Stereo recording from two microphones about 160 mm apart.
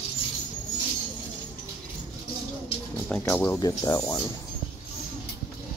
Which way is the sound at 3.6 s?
20° left (ahead or behind).